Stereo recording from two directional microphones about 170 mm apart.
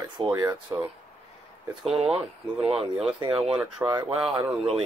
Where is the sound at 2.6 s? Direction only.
35° right (ahead or behind).